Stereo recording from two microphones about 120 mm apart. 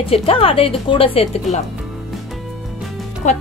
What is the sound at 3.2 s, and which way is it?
Speech, 85° left.